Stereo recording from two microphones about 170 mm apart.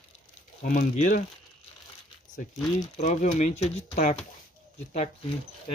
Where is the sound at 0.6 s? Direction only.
45° left (ahead or behind).